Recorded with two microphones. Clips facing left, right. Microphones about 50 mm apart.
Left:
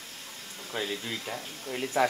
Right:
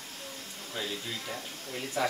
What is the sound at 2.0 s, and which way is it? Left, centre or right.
Speech, left.